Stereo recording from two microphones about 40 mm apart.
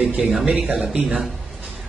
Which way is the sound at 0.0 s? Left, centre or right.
Centre.